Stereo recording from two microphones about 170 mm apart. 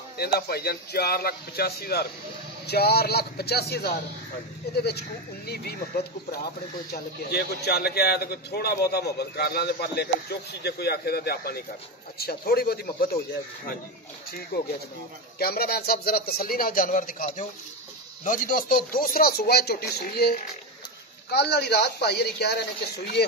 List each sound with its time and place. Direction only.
0.2 s a man's voice: 65° left (ahead or behind)
14.5 s a man's voice: 70° left (ahead or behind)